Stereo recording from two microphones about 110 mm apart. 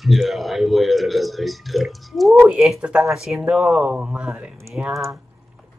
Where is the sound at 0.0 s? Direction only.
Centre (ahead or behind).